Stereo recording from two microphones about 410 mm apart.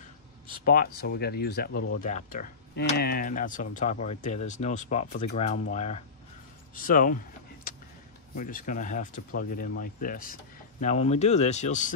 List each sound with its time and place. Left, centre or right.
0.7 s speech: left
8.4 s speech: centre